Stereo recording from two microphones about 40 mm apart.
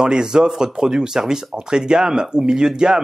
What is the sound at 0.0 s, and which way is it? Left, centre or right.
Speech, centre.